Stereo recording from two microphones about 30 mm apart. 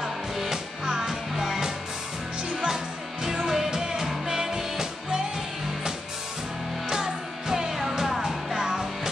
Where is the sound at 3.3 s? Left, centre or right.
Centre.